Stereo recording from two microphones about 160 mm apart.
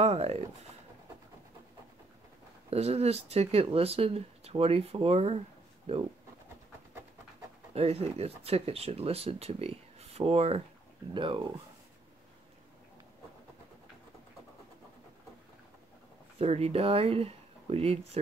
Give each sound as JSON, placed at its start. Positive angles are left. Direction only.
{"t": 0.0, "sound": "speech", "side_deg": -40}
{"t": 2.7, "sound": "speech", "side_deg": -40}
{"t": 7.7, "sound": "speech", "side_deg": -40}
{"t": 16.3, "sound": "speech", "side_deg": -40}